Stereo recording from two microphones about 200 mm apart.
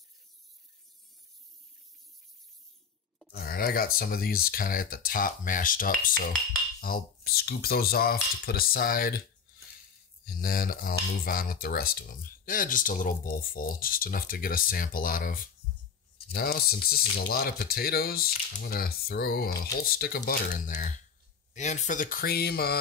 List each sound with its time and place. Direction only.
3.3 s speech: 50° left (ahead or behind)
10.2 s speech: 45° left (ahead or behind)